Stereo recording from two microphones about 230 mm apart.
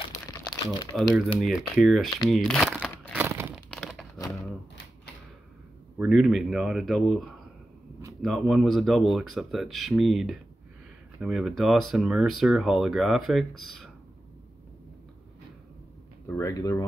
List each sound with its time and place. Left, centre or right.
0.3 s crumpling: centre
1.1 s speech: centre
2.2 s crumpling: centre
3.2 s crumpling: centre
3.7 s crumpling: centre
5.9 s speech: centre
16.3 s speech: centre